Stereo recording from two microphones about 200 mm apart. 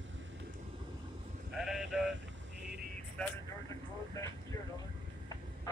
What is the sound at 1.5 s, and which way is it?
Sheep, centre (ahead or behind).